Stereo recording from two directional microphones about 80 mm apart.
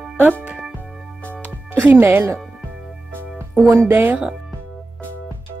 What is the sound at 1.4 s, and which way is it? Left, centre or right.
Music, right.